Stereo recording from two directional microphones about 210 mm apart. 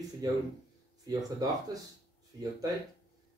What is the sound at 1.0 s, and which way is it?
A man's voice, 15° right (ahead or behind).